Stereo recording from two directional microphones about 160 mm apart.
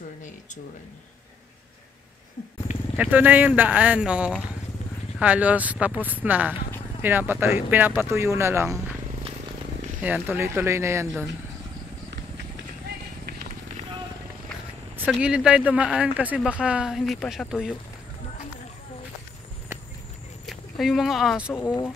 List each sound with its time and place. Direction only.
3.0 s speech: 10° right (ahead or behind)
10.0 s speech: 10° right (ahead or behind)
12.1 s run: 85° right
15.0 s speech: 5° right (ahead or behind)
20.4 s speech: centre (ahead or behind)
21.5 s speech: 15° left (ahead or behind)